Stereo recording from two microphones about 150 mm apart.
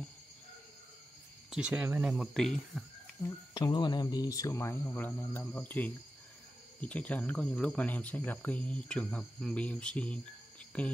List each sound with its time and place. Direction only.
1.5 s speech: 10° right (ahead or behind)
2.3 s speech: centre (ahead or behind)
3.2 s speech: 25° left (ahead or behind); by 10.9 s 10° left (ahead or behind)